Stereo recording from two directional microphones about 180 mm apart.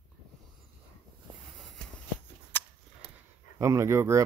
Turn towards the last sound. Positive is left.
turn(degrees=-15)  # may be behind; listen again after turning